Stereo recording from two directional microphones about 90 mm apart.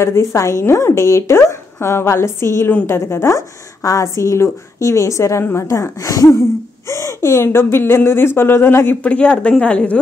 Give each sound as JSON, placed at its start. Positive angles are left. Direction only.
{"t": 0.0, "sound": "speech", "side_deg": 30}